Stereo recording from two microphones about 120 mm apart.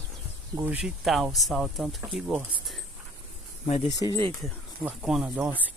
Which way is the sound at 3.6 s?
80° left.